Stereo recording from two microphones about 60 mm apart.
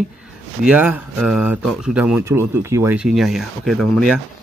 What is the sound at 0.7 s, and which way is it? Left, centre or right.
Speech, right.